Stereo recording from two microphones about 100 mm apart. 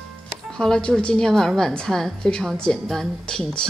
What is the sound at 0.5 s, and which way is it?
A woman's voice, 5° left (ahead or behind).